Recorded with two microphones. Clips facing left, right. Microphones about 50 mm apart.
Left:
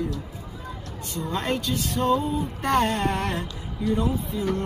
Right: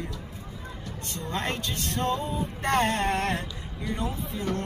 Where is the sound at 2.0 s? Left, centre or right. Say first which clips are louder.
Left 4 dB; centre.